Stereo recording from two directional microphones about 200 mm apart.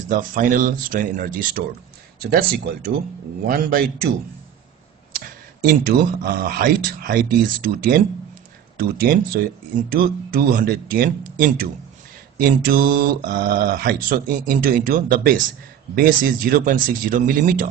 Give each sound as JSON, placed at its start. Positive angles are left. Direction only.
{"t": 0.1, "sound": "speech", "side_deg": -40}
{"t": 5.2, "sound": "speech", "side_deg": -45}